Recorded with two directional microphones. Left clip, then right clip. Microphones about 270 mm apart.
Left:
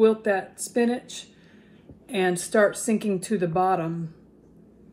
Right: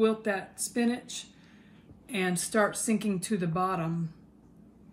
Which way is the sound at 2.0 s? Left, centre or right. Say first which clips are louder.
Left 7 dB; centre.